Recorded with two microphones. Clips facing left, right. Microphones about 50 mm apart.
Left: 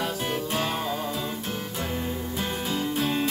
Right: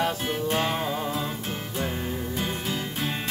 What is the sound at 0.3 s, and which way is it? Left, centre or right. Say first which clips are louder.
Music: right 2 dB; centre.